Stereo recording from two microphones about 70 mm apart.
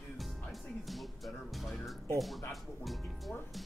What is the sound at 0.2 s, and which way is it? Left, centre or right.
Music, centre.